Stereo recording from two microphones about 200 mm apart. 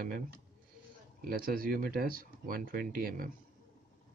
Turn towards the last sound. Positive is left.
turn(degrees=-45)  # may be behind; listen again after turning